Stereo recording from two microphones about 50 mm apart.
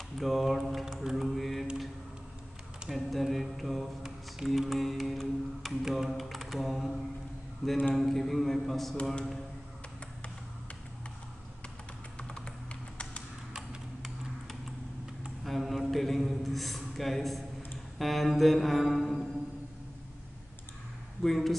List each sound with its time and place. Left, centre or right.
0.2 s mantra: centre
2.9 s mantra: centre
7.9 s speech: centre
12.2 s computer keyboard: left
13.5 s tick-tock: centre
15.4 s a sound: centre
17.9 s mantra: centre
21.2 s speech: centre